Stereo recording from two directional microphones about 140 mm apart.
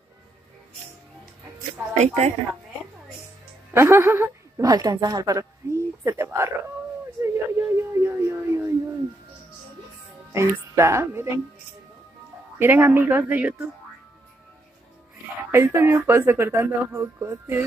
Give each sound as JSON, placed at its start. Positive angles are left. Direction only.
{"t": 2.0, "sound": "a woman's voice", "side_deg": -55}
{"t": 3.7, "sound": "a woman's voice", "side_deg": -20}
{"t": 4.6, "sound": "speech", "side_deg": -30}
{"t": 10.3, "sound": "speech", "side_deg": -20}
{"t": 12.5, "sound": "speech", "side_deg": -15}
{"t": 15.5, "sound": "speech", "side_deg": -15}